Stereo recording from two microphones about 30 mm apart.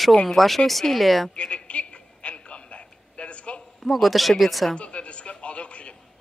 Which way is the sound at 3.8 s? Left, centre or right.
Centre.